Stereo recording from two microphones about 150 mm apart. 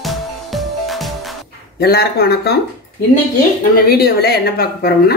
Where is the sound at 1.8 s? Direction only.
90° left.